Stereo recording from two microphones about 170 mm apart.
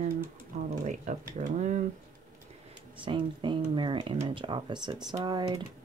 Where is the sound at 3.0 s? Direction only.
30° right (ahead or behind).